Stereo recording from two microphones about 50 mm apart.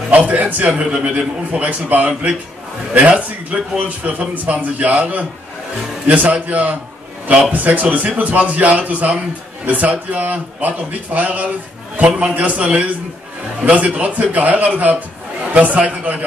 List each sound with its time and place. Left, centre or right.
0.1 s a man's voice: right